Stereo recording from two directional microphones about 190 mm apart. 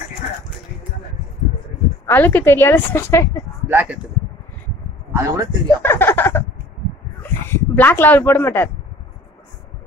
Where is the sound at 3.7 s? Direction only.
10° right (ahead or behind).